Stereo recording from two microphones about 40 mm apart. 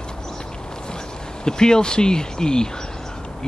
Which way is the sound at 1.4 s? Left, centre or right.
Centre.